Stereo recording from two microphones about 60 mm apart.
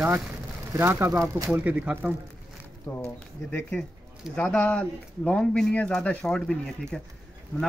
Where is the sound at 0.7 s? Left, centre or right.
Right.